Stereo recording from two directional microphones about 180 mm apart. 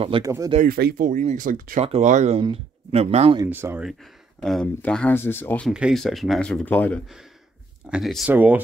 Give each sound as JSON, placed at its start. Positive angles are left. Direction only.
{"t": 0.2, "sound": "speech", "side_deg": -20}
{"t": 0.6, "sound": "speech", "side_deg": -55}
{"t": 1.8, "sound": "speech", "side_deg": -40}
{"t": 3.4, "sound": "speech", "side_deg": -10}
{"t": 4.4, "sound": "speech", "side_deg": 0}
{"t": 5.7, "sound": "speech", "side_deg": -5}